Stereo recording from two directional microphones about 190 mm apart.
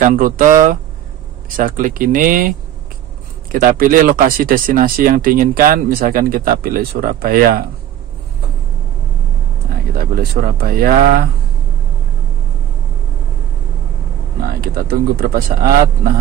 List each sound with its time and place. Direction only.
0.0 s speech: 45° right (ahead or behind)
3.5 s speech: 45° right (ahead or behind)
10.6 s speech: 50° right (ahead or behind)
14.6 s speech: 50° right (ahead or behind)